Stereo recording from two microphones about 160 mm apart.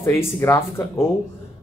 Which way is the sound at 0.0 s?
15° left (ahead or behind).